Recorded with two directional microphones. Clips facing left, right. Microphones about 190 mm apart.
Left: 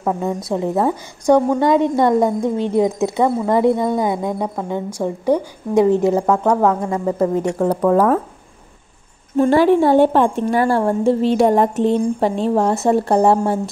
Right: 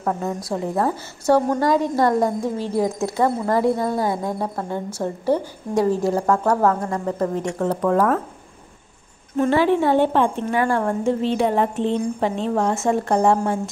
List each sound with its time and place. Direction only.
0.0 s a woman's voice: 15° left (ahead or behind)
9.4 s a woman's voice: 40° left (ahead or behind)
11.2 s a woman's voice: 40° left (ahead or behind)